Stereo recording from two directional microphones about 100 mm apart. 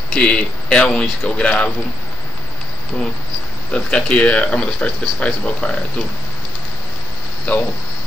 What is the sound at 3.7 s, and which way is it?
Speech, 10° left (ahead or behind).